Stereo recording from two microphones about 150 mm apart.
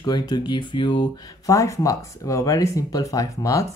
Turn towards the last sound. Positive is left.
turn(degrees=20)  # may be behind; listen again after turning